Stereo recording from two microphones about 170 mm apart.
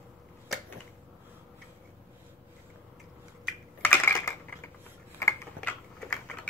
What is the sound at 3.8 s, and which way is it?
Typing, 15° left (ahead or behind).